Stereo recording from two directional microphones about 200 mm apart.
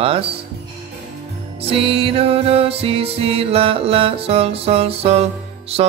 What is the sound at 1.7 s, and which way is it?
Music, 25° right (ahead or behind).